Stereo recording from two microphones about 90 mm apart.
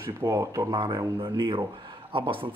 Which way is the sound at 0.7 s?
60° right (ahead or behind).